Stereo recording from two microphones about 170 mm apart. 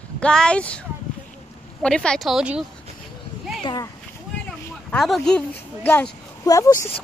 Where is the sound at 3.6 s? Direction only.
25° left (ahead or behind).